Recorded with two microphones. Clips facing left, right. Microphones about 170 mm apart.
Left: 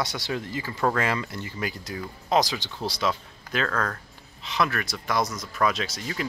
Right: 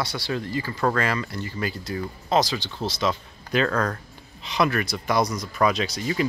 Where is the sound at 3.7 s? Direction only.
15° right (ahead or behind).